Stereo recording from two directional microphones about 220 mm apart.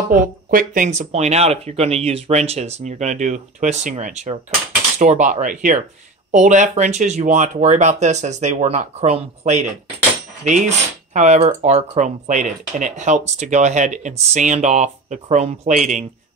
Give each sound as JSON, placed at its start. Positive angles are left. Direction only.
{"t": 0.1, "sound": "speech", "side_deg": -40}